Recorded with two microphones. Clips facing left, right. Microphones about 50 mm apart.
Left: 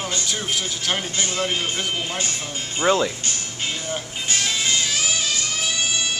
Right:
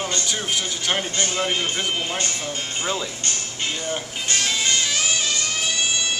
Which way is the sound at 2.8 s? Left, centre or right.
Left.